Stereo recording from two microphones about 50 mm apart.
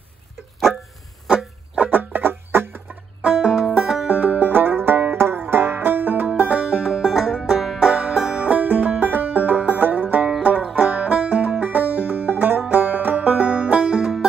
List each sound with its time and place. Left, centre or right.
1.8 s music: right
3.3 s banjo: centre
3.8 s music: centre
4.1 s music: right
4.5 s banjo: right
6.6 s music: centre
7.9 s music: right
8.4 s music: right
10.6 s music: right
12.0 s banjo: right; by 14.1 s centre